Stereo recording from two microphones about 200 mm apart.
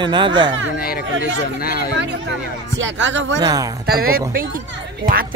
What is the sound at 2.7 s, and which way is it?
Speech, 65° right (ahead or behind).